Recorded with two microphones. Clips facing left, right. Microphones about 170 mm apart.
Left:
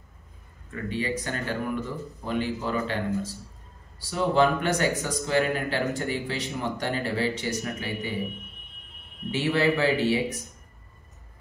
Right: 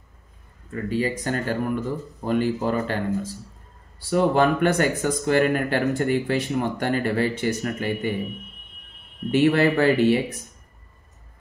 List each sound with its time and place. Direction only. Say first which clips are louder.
0.8 s speech: right 5 dB; 40° right (ahead or behind)
9.3 s speech: right 6 dB; 55° right (ahead or behind)